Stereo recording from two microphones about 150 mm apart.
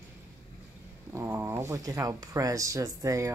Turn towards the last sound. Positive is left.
turn(degrees=-20)  # may be behind; listen again after turning